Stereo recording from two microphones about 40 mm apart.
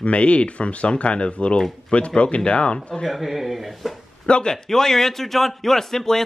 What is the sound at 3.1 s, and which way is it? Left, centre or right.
Speech, centre.